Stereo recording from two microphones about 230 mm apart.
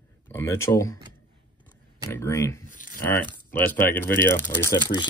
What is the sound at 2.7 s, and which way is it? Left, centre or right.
Speech, left.